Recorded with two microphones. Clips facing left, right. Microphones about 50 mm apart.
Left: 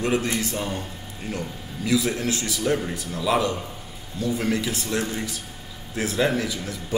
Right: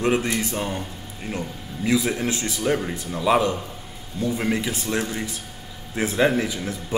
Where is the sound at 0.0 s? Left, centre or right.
Right.